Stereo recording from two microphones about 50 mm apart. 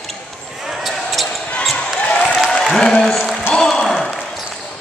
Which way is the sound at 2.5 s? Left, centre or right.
Centre.